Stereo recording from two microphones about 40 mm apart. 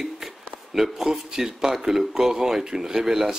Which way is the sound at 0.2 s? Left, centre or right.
Centre.